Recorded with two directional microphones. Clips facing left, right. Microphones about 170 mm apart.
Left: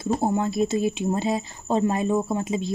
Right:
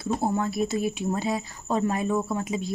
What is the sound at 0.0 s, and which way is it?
Speech, 20° left (ahead or behind).